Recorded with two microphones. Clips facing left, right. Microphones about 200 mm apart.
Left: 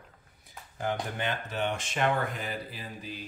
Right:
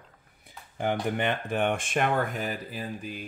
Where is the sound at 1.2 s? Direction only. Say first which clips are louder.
Right 5 dB; 55° right (ahead or behind).